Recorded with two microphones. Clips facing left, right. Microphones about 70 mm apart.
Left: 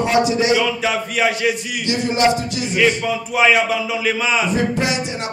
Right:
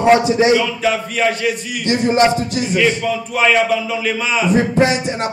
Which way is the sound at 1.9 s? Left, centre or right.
Right.